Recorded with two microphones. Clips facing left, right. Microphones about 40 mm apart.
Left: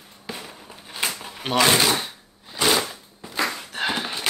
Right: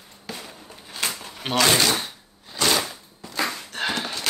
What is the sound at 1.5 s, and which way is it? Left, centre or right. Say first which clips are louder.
Speech: left 1 dB; centre.